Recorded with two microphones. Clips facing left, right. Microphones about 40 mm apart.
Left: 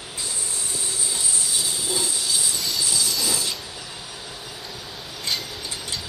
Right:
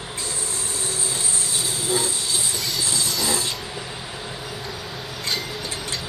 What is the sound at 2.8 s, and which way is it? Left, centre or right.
Train, right.